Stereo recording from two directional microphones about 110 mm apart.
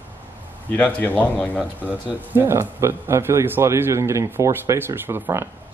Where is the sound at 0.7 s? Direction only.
10° left (ahead or behind).